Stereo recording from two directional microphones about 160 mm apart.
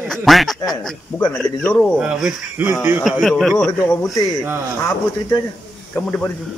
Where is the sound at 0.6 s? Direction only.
25° left (ahead or behind).